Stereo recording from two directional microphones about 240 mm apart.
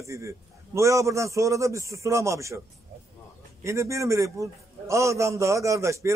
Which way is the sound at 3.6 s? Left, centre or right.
Centre.